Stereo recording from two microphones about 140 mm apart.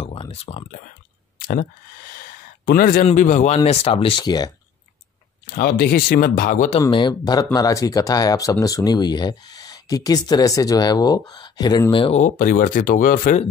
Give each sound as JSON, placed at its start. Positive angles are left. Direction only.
{"t": 0.0, "sound": "a sound", "side_deg": 45}
{"t": 2.6, "sound": "speech", "side_deg": 90}
{"t": 3.2, "sound": "speech", "side_deg": 60}
{"t": 5.5, "sound": "speech", "side_deg": 90}
{"t": 6.9, "sound": "speech", "side_deg": 35}
{"t": 12.0, "sound": "speech", "side_deg": 55}